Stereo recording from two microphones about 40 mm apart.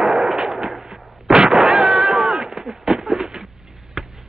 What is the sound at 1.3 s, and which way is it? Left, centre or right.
Cat, centre.